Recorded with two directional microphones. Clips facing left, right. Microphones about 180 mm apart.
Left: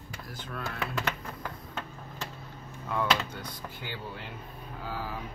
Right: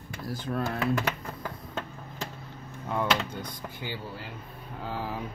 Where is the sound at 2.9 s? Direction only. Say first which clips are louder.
Right 1 dB; 15° right (ahead or behind).